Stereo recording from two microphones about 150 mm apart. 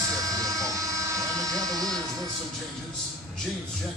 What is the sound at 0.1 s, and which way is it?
Vehicle, 25° right (ahead or behind).